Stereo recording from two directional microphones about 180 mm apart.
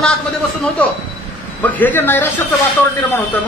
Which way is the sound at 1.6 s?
10° left (ahead or behind).